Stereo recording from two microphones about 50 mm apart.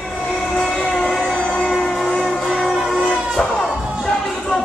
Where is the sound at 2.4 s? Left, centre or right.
Centre.